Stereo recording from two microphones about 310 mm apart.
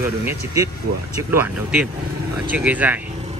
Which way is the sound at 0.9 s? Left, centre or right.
Right.